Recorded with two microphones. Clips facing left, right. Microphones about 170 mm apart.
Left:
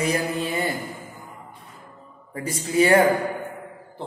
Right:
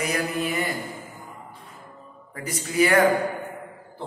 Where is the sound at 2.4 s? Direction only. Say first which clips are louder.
Left 3 dB; 30° left (ahead or behind).